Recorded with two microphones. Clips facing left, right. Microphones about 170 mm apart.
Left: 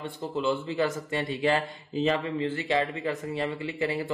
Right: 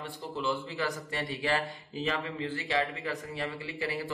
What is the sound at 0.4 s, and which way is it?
A man's voice, 25° left (ahead or behind).